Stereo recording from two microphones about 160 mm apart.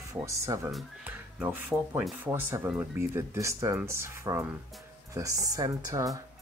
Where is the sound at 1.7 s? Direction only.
Centre (ahead or behind).